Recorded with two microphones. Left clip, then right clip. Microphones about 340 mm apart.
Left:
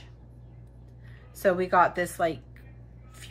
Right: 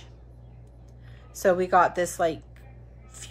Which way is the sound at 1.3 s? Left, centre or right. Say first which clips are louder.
Right 2 dB; centre.